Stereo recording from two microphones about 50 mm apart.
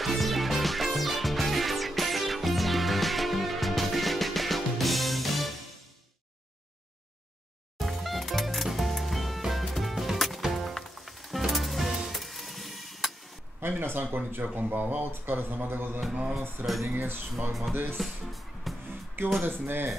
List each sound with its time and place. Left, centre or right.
0.0 s music: centre
7.8 s music: centre
13.6 s speech: right
17.9 s music: centre
19.4 s speech: right